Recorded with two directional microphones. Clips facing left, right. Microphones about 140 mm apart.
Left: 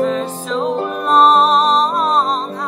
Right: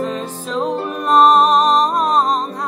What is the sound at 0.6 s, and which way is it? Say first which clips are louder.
Music: left 1 dB; 5° right (ahead or behind).